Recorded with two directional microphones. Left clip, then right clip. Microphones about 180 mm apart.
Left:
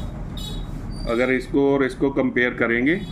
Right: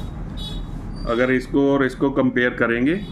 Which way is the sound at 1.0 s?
25° right (ahead or behind).